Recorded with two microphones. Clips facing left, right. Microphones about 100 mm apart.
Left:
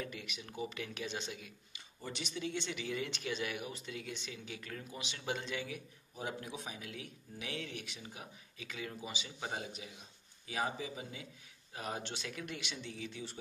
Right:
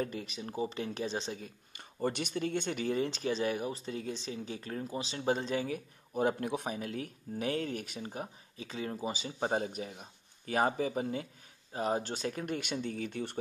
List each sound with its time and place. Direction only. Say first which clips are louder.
0.0 s speech: right 8 dB; 35° right (ahead or behind)
1.8 s speech: right 11 dB; 55° right (ahead or behind); by 5.8 s 40° right (ahead or behind)
6.1 s speech: right 11 dB; 55° right (ahead or behind)
11.7 s speech: right 9 dB; 35° right (ahead or behind); by 13.4 s 55° right (ahead or behind)